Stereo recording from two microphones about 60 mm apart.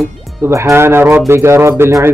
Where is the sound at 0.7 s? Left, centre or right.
Right.